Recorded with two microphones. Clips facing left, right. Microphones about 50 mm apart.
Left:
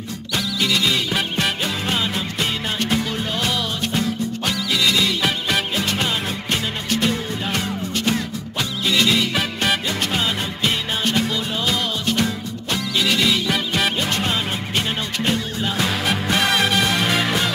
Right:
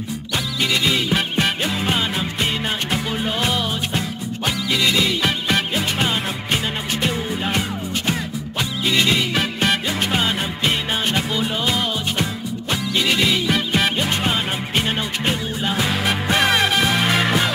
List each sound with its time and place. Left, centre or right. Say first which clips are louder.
0.6 s music: right 1 dB; centre